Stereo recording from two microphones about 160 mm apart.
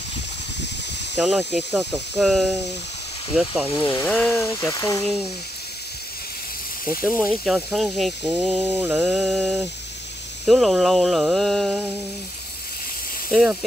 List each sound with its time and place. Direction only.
1.1 s speech: 5° right (ahead or behind)
3.7 s speech: 10° left (ahead or behind)
4.4 s speech: 15° left (ahead or behind)
5.0 s speech: centre (ahead or behind)
7.2 s speech: 5° right (ahead or behind)
13.3 s speech: centre (ahead or behind)